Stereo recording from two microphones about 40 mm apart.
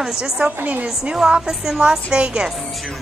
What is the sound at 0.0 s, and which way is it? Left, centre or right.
A woman's voice, centre.